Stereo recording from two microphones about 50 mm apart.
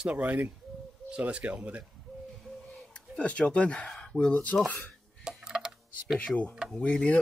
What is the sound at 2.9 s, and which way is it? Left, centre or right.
Speech, left.